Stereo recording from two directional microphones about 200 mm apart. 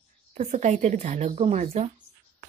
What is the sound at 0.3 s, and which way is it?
Speech, 35° right (ahead or behind).